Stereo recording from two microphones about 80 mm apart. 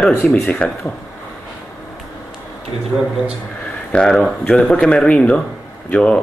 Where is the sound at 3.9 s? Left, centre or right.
Centre.